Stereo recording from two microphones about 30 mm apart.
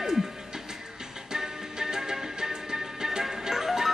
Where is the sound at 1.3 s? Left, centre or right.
Right.